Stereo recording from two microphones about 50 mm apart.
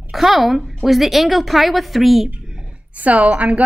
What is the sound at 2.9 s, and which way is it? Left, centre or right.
Speech, right.